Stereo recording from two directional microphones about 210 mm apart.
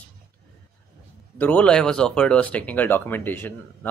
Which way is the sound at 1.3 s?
5° left (ahead or behind).